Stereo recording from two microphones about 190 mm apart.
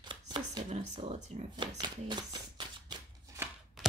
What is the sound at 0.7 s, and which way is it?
Speech, 30° right (ahead or behind).